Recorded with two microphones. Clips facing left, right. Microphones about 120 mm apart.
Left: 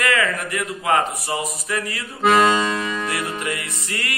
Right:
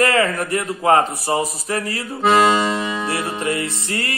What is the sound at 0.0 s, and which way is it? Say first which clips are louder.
A man's voice: right 4 dB; 35° right (ahead or behind).